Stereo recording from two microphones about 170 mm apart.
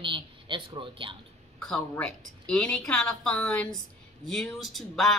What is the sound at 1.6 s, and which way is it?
A woman's voice, 5° left (ahead or behind).